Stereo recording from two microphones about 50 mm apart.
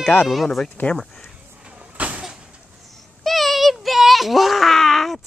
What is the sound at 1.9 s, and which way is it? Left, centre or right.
Vehicle, right.